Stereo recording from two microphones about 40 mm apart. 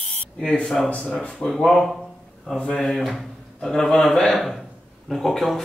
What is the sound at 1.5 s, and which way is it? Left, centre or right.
A man's voice, centre.